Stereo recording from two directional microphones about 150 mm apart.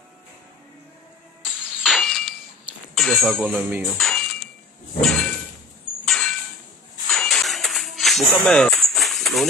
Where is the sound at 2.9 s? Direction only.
Centre (ahead or behind).